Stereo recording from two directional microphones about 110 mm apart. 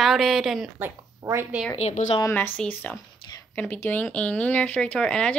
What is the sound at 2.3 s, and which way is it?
Speech, 20° left (ahead or behind).